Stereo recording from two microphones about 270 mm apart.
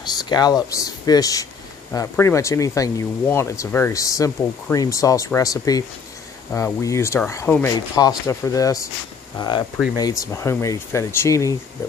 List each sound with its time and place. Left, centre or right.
0.1 s speech: centre